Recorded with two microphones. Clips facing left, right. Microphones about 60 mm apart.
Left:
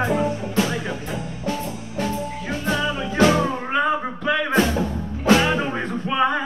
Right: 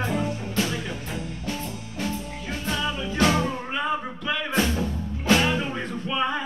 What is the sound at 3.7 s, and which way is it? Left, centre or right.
Music, left.